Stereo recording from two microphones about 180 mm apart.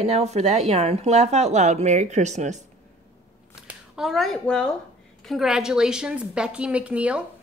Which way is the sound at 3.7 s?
Centre (ahead or behind).